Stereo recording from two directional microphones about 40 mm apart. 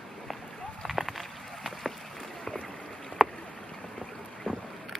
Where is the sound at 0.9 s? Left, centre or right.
Centre.